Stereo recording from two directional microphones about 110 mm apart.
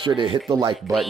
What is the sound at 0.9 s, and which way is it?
Speech, 30° right (ahead or behind).